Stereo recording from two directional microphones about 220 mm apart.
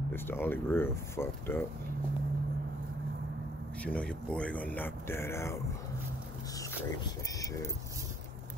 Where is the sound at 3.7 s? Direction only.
5° left (ahead or behind).